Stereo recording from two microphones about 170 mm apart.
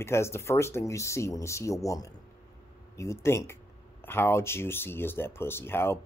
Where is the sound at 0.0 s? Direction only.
15° left (ahead or behind).